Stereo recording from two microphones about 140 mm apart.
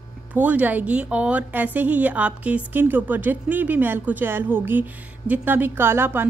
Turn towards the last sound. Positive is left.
turn(degrees=-15)  # may be behind; listen again after turning